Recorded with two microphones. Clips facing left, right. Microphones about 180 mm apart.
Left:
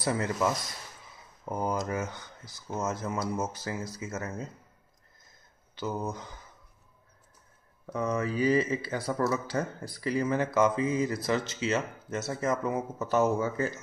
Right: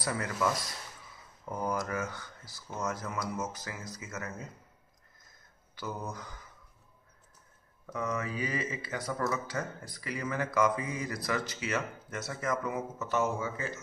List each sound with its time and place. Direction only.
0.0 s speech: 25° left (ahead or behind)
5.8 s speech: 20° left (ahead or behind)
7.8 s speech: 30° left (ahead or behind)